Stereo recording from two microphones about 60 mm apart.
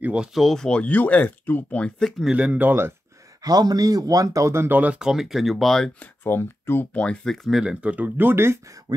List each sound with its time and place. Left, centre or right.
0.0 s speech: centre
0.3 s speech: centre
0.7 s speech: left
2.0 s speech: centre
2.3 s speech: right
3.4 s speech: right
4.6 s speech: right
4.9 s speech: centre
6.2 s speech: left
6.9 s speech: centre
7.6 s speech: centre
8.3 s speech: right